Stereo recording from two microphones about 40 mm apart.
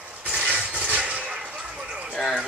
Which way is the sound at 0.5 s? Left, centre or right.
Right.